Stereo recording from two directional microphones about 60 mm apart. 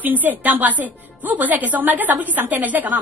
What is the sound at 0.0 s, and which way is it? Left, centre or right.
A woman's voice, right.